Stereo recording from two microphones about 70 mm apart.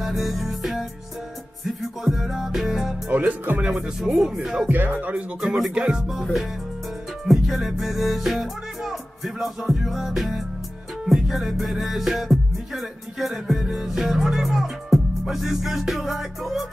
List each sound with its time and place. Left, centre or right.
0.0 s music: centre
3.1 s speech: right
4.1 s music: centre
4.6 s speech: right
5.4 s music: centre
7.2 s music: centre